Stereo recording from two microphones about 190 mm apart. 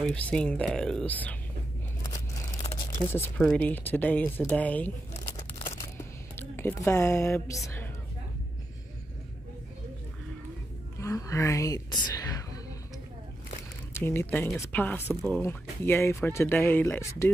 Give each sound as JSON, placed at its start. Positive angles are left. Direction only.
{"t": 0.0, "sound": "speech", "side_deg": 5}
{"t": 2.6, "sound": "crumpling", "side_deg": 35}
{"t": 3.1, "sound": "speech", "side_deg": 10}
{"t": 6.5, "sound": "speech", "side_deg": 10}
{"t": 11.0, "sound": "a woman's voice", "side_deg": 15}
{"t": 13.9, "sound": "speech", "side_deg": 15}